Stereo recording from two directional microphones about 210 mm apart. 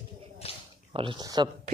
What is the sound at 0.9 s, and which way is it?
Speech, 25° right (ahead or behind).